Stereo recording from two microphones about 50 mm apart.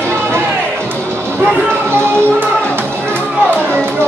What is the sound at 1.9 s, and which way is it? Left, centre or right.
Music, right.